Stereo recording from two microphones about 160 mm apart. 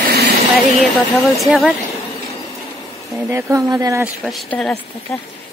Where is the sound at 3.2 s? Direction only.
15° right (ahead or behind).